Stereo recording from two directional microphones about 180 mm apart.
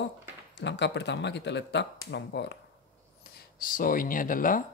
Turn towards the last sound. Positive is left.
turn(degrees=50)  # may be behind; listen again after turning